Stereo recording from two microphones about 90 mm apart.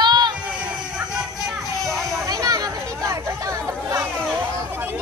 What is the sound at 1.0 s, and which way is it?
Music, 5° right (ahead or behind).